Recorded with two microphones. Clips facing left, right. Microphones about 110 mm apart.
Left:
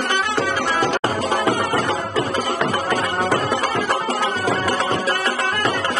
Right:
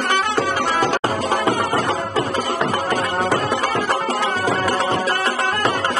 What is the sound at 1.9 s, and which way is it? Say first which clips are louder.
Music: even; 40° right (ahead or behind).